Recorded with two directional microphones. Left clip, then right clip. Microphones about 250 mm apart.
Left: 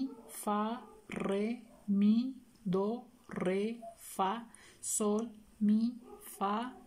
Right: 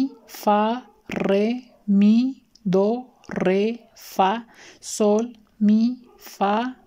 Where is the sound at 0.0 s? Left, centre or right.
Right.